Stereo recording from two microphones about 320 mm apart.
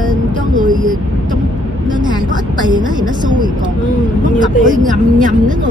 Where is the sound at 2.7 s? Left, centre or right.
Centre.